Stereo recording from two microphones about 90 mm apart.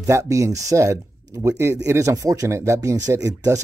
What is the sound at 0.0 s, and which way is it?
Speech, 35° right (ahead or behind).